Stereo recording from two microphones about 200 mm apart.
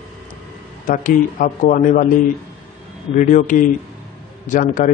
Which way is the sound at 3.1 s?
40° left (ahead or behind).